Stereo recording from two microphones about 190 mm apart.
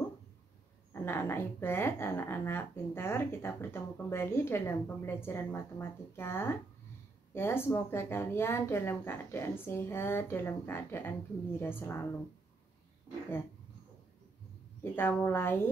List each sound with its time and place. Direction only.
0.9 s speech: 15° left (ahead or behind)
14.8 s speech: 10° left (ahead or behind)